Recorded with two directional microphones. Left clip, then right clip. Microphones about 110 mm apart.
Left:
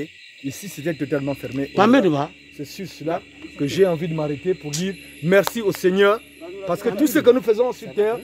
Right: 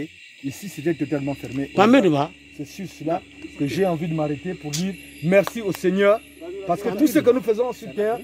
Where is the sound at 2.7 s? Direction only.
35° left (ahead or behind).